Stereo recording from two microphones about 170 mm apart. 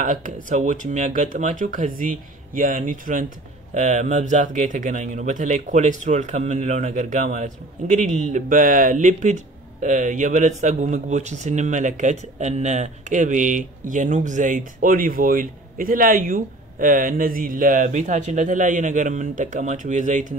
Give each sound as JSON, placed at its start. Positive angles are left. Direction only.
{"t": 0.0, "sound": "a man's voice", "side_deg": -50}